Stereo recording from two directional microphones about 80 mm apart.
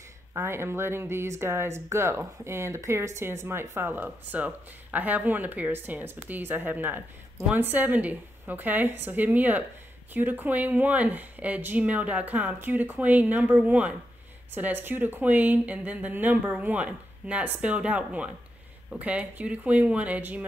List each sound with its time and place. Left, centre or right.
0.3 s speech: right